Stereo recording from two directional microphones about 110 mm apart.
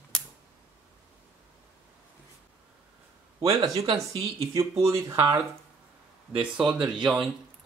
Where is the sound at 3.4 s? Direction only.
35° right (ahead or behind).